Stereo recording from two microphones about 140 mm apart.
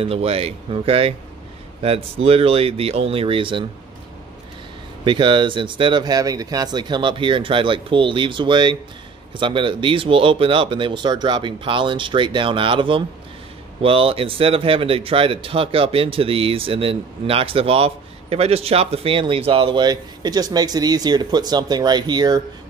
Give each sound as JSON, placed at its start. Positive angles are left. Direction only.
{"t": 0.0, "sound": "speech", "side_deg": -45}
{"t": 5.0, "sound": "speech", "side_deg": -35}